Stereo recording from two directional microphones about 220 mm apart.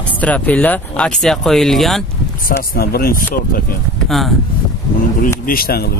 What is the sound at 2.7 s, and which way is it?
Speech, 45° left (ahead or behind).